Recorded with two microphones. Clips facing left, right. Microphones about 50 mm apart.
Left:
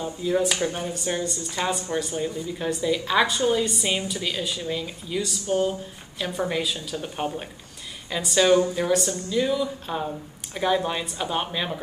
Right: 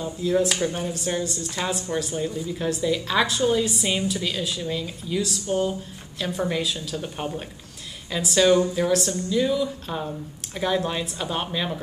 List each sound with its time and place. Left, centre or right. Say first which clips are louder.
0.0 s speech: right 1 dB; centre